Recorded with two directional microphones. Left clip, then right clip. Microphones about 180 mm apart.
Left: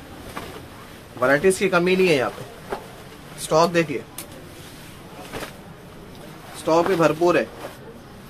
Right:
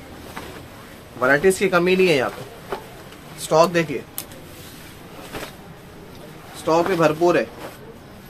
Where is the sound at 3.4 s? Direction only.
10° right (ahead or behind).